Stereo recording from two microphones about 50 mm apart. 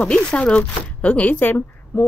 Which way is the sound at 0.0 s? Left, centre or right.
Centre.